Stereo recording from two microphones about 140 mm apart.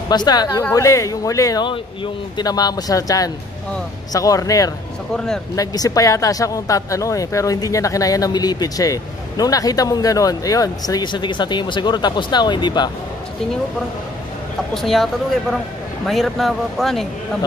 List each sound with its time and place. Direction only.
0.1 s speech: 30° left (ahead or behind)
5.1 s speech: 5° left (ahead or behind)
5.6 s speech: 25° left (ahead or behind)
14.7 s speech: centre (ahead or behind)
16.1 s speech: centre (ahead or behind)